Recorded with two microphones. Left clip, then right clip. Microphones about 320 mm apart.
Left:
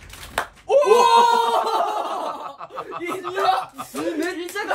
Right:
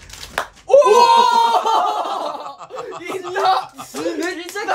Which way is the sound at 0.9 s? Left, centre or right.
Centre.